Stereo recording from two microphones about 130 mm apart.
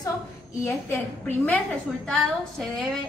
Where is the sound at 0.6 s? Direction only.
15° left (ahead or behind).